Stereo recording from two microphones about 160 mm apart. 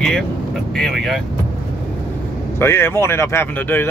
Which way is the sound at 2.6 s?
15° left (ahead or behind).